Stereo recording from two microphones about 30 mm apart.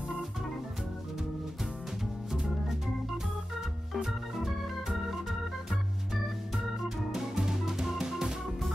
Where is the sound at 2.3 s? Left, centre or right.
Centre.